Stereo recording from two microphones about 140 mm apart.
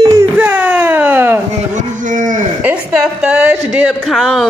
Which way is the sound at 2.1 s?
65° right (ahead or behind).